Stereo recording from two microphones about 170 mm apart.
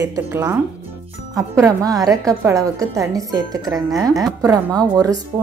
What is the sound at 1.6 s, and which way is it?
A woman's voice, 20° right (ahead or behind).